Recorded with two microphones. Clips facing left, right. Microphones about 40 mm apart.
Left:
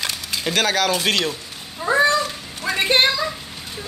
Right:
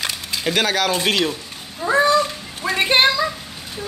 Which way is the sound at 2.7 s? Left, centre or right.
Centre.